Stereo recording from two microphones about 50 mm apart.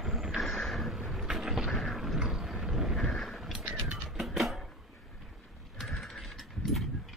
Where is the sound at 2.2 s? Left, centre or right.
Centre.